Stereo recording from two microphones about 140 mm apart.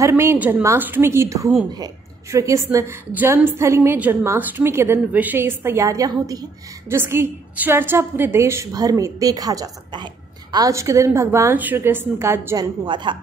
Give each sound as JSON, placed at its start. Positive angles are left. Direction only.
{"t": 0.0, "sound": "a woman's voice", "side_deg": -15}
{"t": 12.8, "sound": "a woman's voice", "side_deg": -35}